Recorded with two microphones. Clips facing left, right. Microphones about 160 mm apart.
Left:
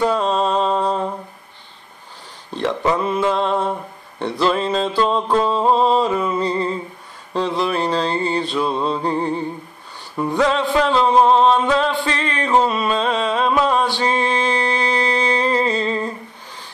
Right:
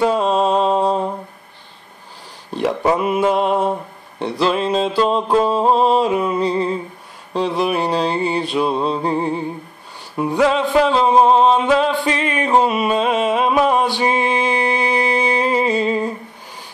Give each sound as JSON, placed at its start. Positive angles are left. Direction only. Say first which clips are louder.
{"t": 0.0, "sound": "music", "louder": "right 2 dB", "side_deg": -10}
{"t": 2.9, "sound": "music", "louder": "right 3 dB", "side_deg": -15}